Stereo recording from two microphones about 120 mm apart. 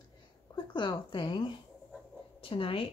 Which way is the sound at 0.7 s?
40° left (ahead or behind).